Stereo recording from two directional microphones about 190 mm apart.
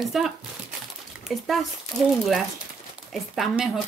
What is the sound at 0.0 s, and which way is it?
Speech, centre (ahead or behind).